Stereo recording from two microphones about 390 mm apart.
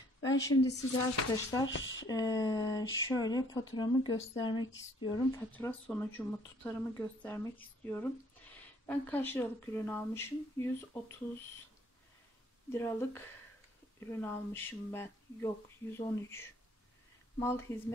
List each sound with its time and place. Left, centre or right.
0.2 s a woman's voice: centre
1.7 s speech: left
2.0 s speech: centre
12.7 s speech: centre